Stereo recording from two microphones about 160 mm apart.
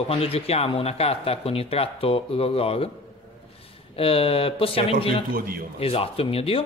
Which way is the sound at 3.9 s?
35° left (ahead or behind).